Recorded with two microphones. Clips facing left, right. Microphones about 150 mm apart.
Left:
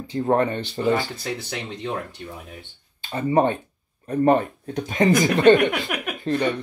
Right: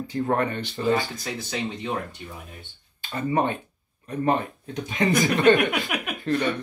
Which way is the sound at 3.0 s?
25° left (ahead or behind).